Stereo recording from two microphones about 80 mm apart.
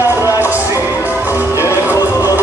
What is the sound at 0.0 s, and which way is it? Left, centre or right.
Music, left.